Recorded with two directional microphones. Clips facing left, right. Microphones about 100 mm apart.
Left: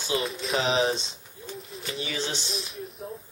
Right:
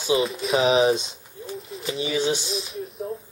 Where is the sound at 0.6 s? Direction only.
15° right (ahead or behind).